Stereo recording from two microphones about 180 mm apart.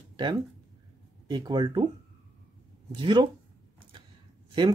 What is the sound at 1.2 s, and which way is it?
Speech, 25° right (ahead or behind).